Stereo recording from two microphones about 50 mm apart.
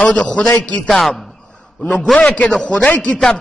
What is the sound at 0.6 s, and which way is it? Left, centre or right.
Speech, left.